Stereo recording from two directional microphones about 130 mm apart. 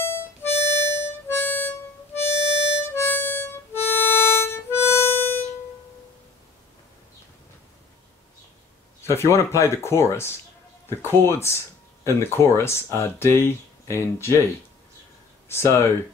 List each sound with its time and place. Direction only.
0.0 s harmonica: 20° left (ahead or behind)
9.0 s speech: 20° left (ahead or behind)
15.4 s speech: 20° left (ahead or behind)